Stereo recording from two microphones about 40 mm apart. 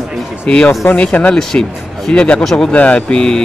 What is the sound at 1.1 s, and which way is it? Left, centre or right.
Speech, left.